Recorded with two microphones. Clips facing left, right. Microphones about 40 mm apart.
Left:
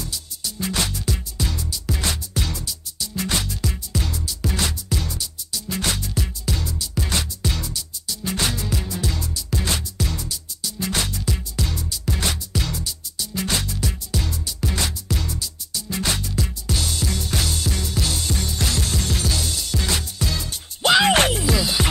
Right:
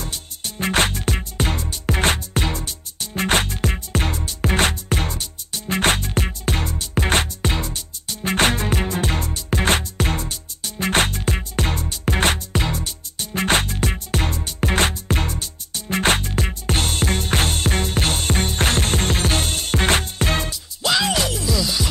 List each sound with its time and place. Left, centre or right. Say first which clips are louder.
0.0 s music: right 1 dB; right
21.0 s music: left 4 dB; left
21.5 s music: left 1 dB; left